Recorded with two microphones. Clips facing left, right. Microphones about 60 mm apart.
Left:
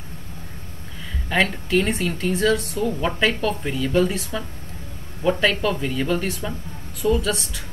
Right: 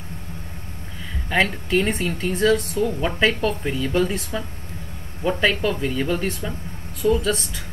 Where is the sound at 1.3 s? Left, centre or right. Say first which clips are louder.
Even; centre.